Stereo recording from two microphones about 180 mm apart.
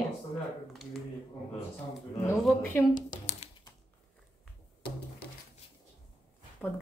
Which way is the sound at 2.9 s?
45° left (ahead or behind).